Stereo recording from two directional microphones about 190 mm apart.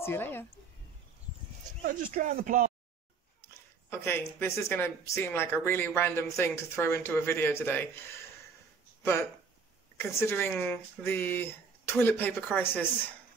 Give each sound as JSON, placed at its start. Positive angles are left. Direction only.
{"t": 0.0, "sound": "speech", "side_deg": 10}
{"t": 1.9, "sound": "speech", "side_deg": -45}
{"t": 3.9, "sound": "speech", "side_deg": 10}
{"t": 9.9, "sound": "speech", "side_deg": 15}